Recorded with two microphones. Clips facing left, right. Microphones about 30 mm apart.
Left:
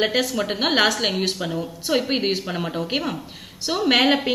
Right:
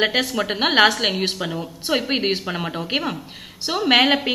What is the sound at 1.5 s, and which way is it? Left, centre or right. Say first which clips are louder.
A woman's voice: even; centre.